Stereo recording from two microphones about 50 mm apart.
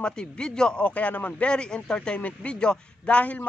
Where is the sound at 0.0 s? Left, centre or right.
Centre.